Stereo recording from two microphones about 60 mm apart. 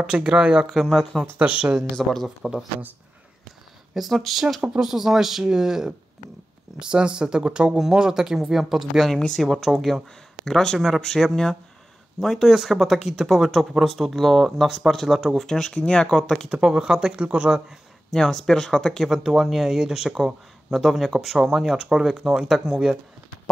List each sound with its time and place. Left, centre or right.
0.0 s speech: centre
2.2 s speech: centre
3.9 s speech: centre
16.4 s speech: centre
18.1 s speech: centre
19.0 s speech: centre